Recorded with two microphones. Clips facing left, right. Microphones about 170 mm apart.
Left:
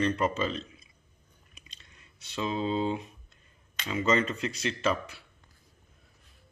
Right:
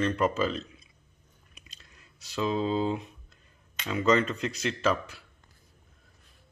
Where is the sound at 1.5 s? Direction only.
Centre (ahead or behind).